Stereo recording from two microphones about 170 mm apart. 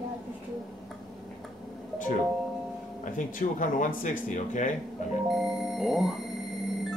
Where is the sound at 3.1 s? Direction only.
50° left (ahead or behind).